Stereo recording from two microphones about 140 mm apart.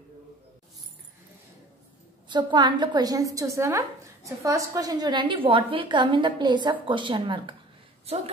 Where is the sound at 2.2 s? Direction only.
35° right (ahead or behind).